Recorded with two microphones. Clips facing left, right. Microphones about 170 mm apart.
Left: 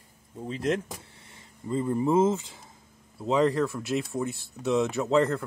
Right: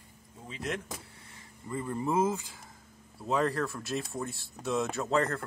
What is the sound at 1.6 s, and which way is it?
Speech, 20° left (ahead or behind).